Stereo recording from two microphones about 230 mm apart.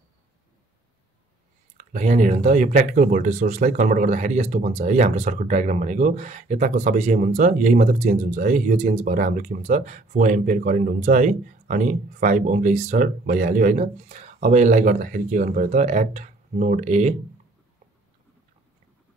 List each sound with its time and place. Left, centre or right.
1.8 s speech: right